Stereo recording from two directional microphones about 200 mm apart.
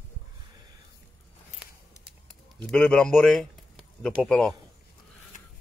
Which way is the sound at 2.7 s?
5° left (ahead or behind).